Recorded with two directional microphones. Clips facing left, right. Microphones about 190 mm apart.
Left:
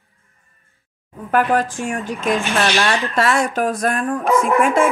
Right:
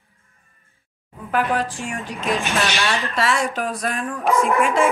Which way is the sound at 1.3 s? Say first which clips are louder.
Left 4 dB; 50° left (ahead or behind).